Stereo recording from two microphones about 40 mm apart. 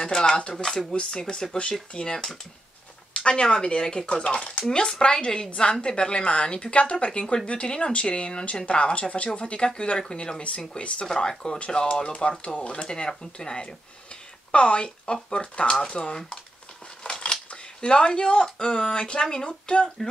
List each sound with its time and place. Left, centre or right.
0.0 s speech: centre
0.9 s speech: left
12.9 s speech: centre
17.0 s scissors: centre
17.7 s speech: left